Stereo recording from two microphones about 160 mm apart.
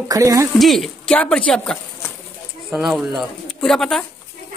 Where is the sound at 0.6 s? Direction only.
Centre (ahead or behind).